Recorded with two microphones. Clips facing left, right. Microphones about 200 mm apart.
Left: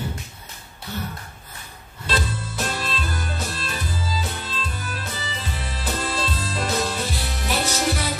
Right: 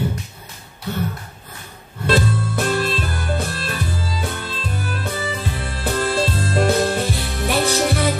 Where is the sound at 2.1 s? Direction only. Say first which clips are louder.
Right 8 dB; 55° right (ahead or behind).